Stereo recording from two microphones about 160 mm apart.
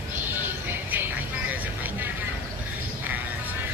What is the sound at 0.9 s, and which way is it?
Vehicle, 10° right (ahead or behind).